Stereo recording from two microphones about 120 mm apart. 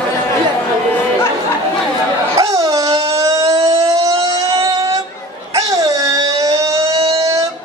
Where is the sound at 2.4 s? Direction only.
30° right (ahead or behind).